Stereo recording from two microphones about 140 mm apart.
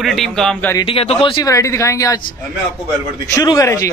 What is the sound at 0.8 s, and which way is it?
Speech, 40° left (ahead or behind).